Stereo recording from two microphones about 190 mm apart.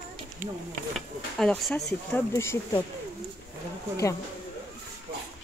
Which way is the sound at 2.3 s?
15° left (ahead or behind).